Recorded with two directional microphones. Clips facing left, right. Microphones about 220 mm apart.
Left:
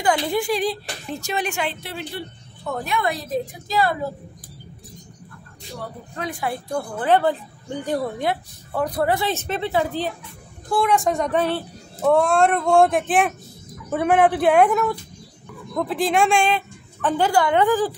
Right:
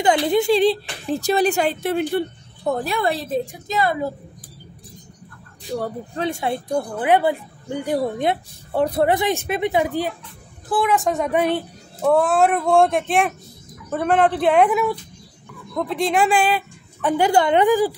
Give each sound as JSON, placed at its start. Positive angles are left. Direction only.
{"t": 0.0, "sound": "a woman's voice", "side_deg": -20}
{"t": 2.6, "sound": "a woman's voice", "side_deg": -35}
{"t": 6.1, "sound": "speech", "side_deg": -25}
{"t": 10.7, "sound": "speech", "side_deg": 0}
{"t": 12.0, "sound": "speech", "side_deg": 0}
{"t": 17.3, "sound": "speech", "side_deg": -20}